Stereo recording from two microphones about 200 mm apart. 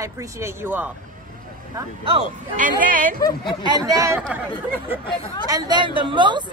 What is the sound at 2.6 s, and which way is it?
Speech, 40° right (ahead or behind).